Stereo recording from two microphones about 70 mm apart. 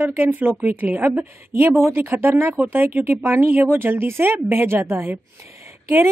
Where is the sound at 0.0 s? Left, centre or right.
Right.